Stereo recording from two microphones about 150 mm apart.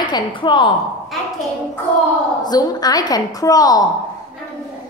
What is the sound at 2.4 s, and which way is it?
A child's voice, 25° left (ahead or behind).